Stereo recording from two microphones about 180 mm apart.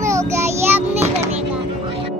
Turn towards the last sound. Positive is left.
turn(degrees=-15)  # may be behind; listen again after turning